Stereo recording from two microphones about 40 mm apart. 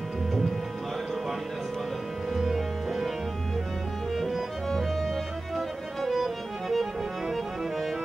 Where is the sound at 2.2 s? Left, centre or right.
Centre.